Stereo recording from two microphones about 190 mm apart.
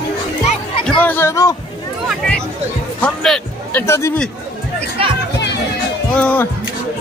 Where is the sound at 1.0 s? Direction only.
10° left (ahead or behind).